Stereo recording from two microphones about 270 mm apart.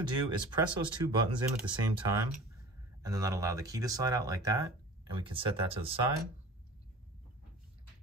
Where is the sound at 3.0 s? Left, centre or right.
Centre.